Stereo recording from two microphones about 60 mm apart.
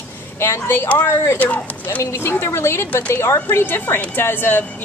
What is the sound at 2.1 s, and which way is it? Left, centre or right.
A woman's voice, left.